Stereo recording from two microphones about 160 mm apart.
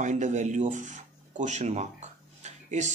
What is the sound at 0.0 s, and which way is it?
A man's voice, 50° right (ahead or behind).